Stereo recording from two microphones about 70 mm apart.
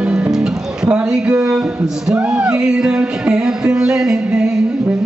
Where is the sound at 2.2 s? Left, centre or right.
Centre.